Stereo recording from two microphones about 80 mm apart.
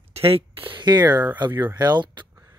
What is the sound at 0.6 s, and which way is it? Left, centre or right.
Speech, right.